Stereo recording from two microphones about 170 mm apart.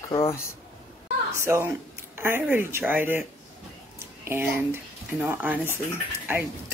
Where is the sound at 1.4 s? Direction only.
15° right (ahead or behind).